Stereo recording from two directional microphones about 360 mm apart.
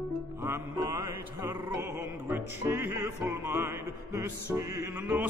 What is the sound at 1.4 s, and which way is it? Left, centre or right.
Music, left.